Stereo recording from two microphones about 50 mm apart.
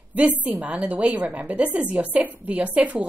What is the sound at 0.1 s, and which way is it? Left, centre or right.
A woman's voice, right.